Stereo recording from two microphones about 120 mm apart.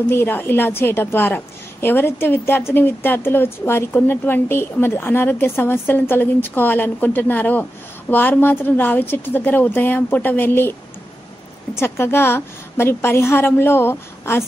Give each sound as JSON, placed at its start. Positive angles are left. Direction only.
{"t": 0.1, "sound": "a woman's voice", "side_deg": 15}
{"t": 11.7, "sound": "a woman's voice", "side_deg": 20}